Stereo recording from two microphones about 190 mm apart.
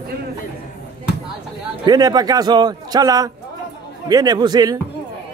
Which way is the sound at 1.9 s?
20° right (ahead or behind).